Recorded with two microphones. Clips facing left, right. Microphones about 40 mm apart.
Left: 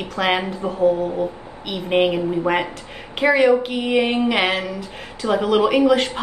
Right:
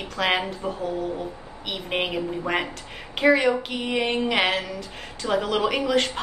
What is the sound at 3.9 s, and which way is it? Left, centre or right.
A woman's voice, centre.